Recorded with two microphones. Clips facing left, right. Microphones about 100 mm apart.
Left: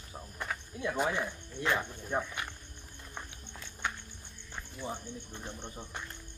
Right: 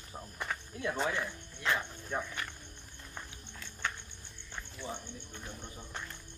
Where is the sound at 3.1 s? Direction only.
10° left (ahead or behind).